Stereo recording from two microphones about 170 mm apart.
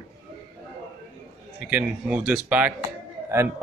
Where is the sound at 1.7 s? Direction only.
10° right (ahead or behind).